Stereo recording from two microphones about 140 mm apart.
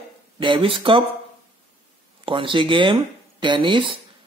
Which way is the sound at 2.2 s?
35° right (ahead or behind).